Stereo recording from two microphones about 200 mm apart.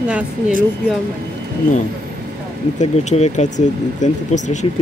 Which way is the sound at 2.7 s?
35° left (ahead or behind).